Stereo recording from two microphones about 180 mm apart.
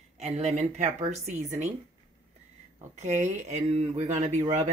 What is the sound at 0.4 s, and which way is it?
Speech, 40° right (ahead or behind).